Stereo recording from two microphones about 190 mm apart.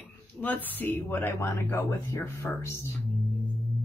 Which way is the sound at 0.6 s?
10° left (ahead or behind).